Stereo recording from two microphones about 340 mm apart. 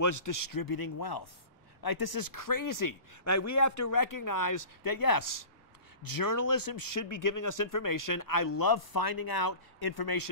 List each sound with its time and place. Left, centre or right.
0.0 s speech: left